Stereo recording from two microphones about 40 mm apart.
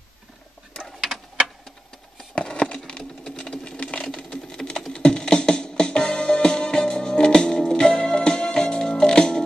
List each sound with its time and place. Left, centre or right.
2.3 s a sound: left
3.0 s engine: centre
3.8 s sewing machine: left
4.9 s music: left